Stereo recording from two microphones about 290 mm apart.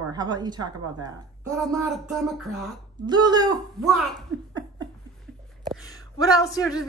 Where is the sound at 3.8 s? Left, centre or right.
Centre.